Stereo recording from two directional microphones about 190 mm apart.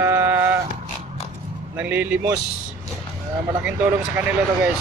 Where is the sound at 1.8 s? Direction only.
10° right (ahead or behind).